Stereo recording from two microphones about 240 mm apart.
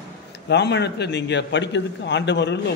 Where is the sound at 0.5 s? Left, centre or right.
Left.